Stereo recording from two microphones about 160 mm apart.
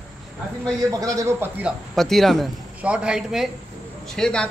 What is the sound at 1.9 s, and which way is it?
Speech, centre (ahead or behind).